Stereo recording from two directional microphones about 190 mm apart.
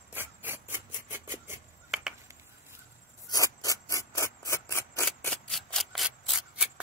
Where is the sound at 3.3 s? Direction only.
20° left (ahead or behind).